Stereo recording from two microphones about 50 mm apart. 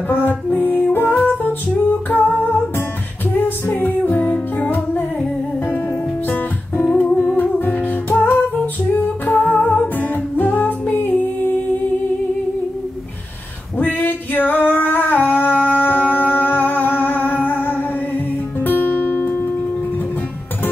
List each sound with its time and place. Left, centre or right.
0.3 s music: left
2.0 s humming: left
3.3 s music: left
6.9 s music: left
7.2 s music: left
13.7 s music: left